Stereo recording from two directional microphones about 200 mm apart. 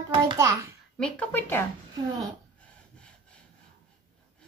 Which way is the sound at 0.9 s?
5° left (ahead or behind).